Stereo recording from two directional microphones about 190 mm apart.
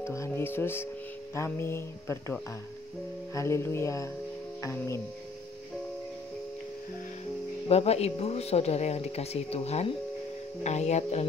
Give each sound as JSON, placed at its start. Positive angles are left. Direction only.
{"t": 0.0, "sound": "music", "side_deg": 15}
{"t": 7.6, "sound": "speech", "side_deg": 35}